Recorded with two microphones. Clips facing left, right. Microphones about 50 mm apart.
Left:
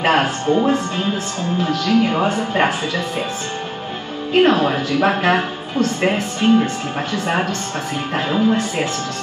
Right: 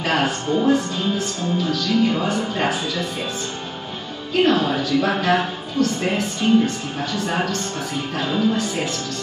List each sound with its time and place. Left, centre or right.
0.0 s a woman's voice: left
4.3 s a woman's voice: left
8.1 s a woman's voice: left